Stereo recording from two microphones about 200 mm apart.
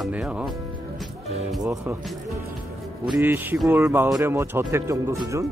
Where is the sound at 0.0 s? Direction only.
5° right (ahead or behind).